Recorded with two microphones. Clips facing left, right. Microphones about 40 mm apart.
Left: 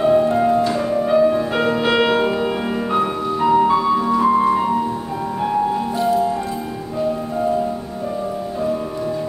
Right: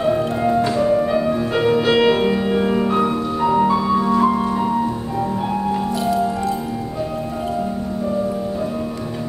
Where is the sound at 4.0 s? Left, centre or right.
Centre.